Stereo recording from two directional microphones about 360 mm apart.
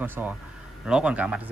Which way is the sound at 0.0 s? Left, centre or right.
Centre.